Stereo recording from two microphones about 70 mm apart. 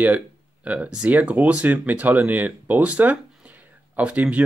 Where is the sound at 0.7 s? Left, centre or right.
Centre.